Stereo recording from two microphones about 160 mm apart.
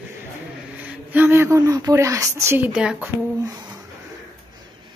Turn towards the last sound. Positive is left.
turn(degrees=-25)  # may be behind; listen again after turning